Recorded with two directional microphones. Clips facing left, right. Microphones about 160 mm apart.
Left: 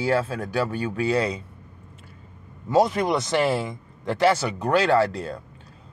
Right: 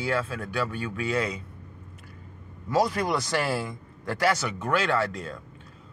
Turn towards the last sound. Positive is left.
turn(degrees=35)  # may be behind; listen again after turning